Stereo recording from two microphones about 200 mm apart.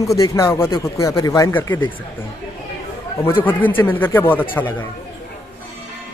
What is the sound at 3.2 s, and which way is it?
A man's voice, 10° left (ahead or behind).